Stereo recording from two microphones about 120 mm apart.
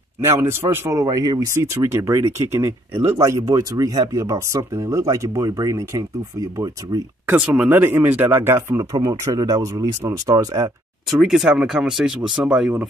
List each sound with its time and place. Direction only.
0.2 s speech: 20° right (ahead or behind)
1.0 s speech: 35° right (ahead or behind)
7.2 s speech: 10° right (ahead or behind); by 10.7 s 30° right (ahead or behind)
11.1 s speech: 5° right (ahead or behind)